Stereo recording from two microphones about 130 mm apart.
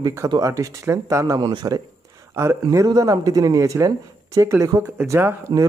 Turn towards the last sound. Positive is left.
turn(degrees=-25)  # may be behind; listen again after turning